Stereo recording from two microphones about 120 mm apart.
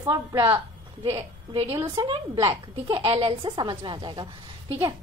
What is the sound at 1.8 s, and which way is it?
A child's voice, 45° right (ahead or behind).